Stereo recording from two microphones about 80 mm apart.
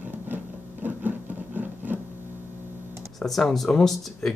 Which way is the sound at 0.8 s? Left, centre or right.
Right.